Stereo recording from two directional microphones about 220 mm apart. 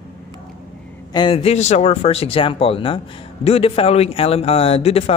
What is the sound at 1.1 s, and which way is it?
Speech, 20° left (ahead or behind).